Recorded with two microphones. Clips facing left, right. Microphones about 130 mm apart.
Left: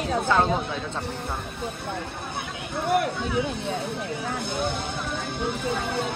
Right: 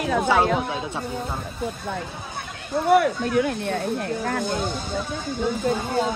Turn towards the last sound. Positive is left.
turn(degrees=65)  # may be behind; listen again after turning